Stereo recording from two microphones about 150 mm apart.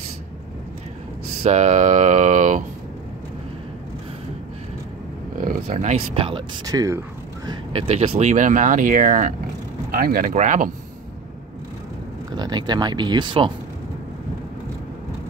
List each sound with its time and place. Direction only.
1.4 s speech: 50° right (ahead or behind)
5.7 s speech: 50° right (ahead or behind)
6.6 s speech: 25° right (ahead or behind)
7.7 s speech: 45° right (ahead or behind)
9.8 s speech: 75° right (ahead or behind); by 10.7 s 60° right (ahead or behind)
12.4 s speech: 30° right (ahead or behind)